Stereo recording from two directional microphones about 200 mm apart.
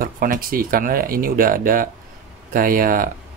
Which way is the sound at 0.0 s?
45° right (ahead or behind).